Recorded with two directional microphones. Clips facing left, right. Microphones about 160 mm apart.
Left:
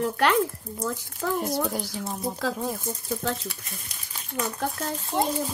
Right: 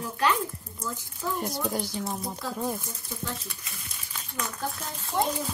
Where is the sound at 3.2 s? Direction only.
85° left.